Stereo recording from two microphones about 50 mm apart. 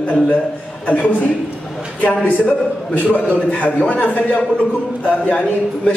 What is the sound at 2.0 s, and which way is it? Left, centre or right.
A woman's voice, left.